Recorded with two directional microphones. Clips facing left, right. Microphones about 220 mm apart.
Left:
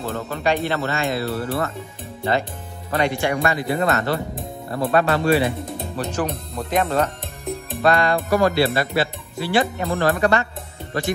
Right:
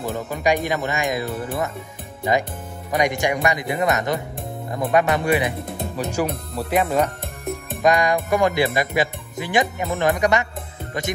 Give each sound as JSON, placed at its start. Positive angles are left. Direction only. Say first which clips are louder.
{"t": 0.0, "sound": "speech", "louder": "right 1 dB", "side_deg": -15}
{"t": 2.9, "sound": "speech", "louder": "even", "side_deg": -15}